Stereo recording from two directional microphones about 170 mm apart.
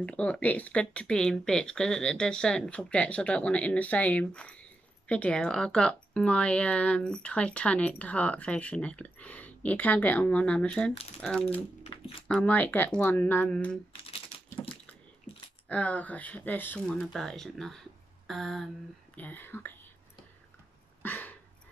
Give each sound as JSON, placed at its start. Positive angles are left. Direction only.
{"t": 0.0, "sound": "speech", "side_deg": 5}
{"t": 11.5, "sound": "speech", "side_deg": 30}
{"t": 12.3, "sound": "speech", "side_deg": 10}
{"t": 15.7, "sound": "speech", "side_deg": 10}
{"t": 21.0, "sound": "dog", "side_deg": 10}